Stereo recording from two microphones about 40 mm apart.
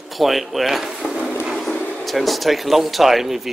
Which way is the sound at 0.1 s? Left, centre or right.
Centre.